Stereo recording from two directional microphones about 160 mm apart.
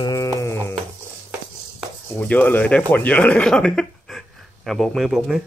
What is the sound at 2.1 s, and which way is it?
Speech, 10° left (ahead or behind).